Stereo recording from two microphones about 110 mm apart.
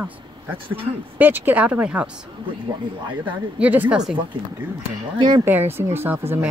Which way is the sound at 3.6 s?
15° right (ahead or behind).